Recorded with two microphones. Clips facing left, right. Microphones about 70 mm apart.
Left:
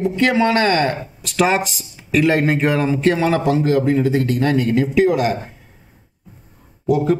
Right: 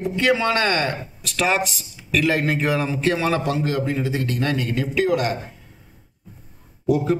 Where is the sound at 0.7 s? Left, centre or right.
Left.